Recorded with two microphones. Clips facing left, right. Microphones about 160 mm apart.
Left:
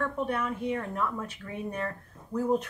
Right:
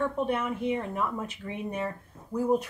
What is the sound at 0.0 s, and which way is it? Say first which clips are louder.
Speech: right 2 dB; 20° right (ahead or behind).